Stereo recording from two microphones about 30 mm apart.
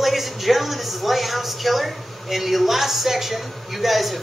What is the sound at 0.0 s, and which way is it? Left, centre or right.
A woman's voice, centre.